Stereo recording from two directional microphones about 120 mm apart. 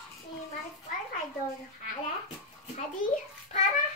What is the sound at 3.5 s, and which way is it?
Bathtub, 70° left (ahead or behind).